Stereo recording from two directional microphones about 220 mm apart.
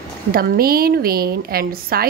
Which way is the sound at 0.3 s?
40° right (ahead or behind).